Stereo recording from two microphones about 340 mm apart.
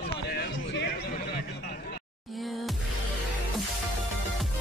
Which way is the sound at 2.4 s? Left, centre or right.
Centre.